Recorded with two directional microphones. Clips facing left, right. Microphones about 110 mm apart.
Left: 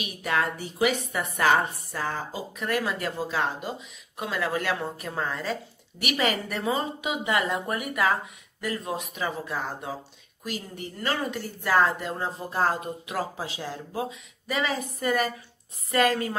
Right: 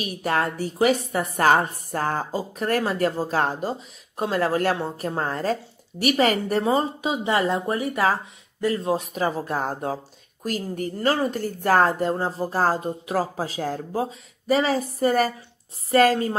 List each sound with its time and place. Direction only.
0.0 s a woman's voice: 40° right (ahead or behind)